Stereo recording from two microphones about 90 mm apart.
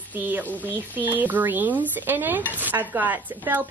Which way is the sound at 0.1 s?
20° right (ahead or behind).